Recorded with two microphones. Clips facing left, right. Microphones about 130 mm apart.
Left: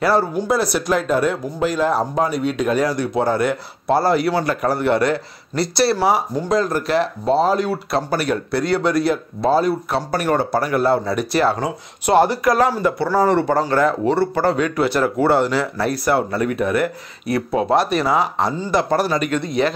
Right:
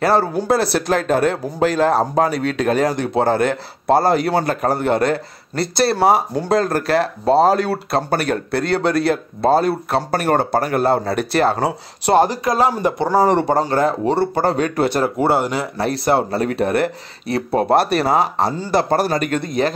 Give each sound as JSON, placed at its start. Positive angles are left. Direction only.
{"t": 0.0, "sound": "speech", "side_deg": -55}
{"t": 2.1, "sound": "speech", "side_deg": -65}
{"t": 12.1, "sound": "speech", "side_deg": -45}
{"t": 12.4, "sound": "speech", "side_deg": -20}
{"t": 14.6, "sound": "speech", "side_deg": -40}
{"t": 15.1, "sound": "speech", "side_deg": -15}
{"t": 17.6, "sound": "speech", "side_deg": -60}
{"t": 18.1, "sound": "speech", "side_deg": -35}
{"t": 18.9, "sound": "speech", "side_deg": -45}